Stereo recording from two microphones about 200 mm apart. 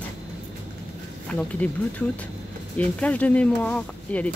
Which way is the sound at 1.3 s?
5° left (ahead or behind).